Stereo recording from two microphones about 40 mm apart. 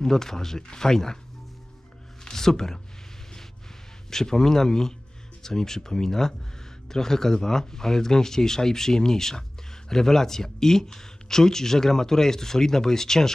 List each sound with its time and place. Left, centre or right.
0.0 s speech: centre
2.2 s speech: centre
4.1 s speech: centre